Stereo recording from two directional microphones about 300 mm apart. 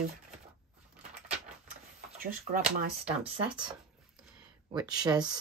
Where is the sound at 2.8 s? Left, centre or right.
Centre.